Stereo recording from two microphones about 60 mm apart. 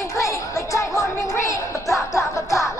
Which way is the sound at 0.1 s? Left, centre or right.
Left.